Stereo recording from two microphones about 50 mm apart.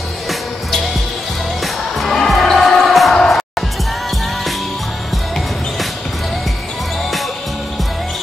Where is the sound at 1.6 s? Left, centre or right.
Centre.